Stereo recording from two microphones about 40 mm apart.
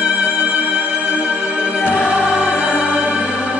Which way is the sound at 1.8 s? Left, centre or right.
Right.